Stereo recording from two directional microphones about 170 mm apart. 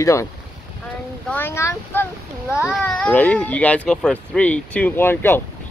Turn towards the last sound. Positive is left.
turn(degrees=15)  # may be behind; listen again after turning